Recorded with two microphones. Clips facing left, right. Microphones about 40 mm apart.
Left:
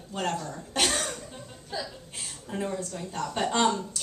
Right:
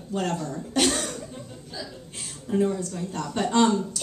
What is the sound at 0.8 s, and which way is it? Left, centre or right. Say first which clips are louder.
Cough: right 3 dB; centre.